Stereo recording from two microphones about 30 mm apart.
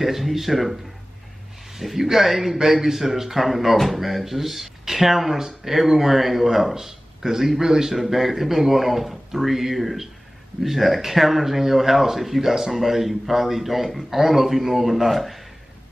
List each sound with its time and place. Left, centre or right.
0.0 s speech: centre
1.8 s a man's voice: centre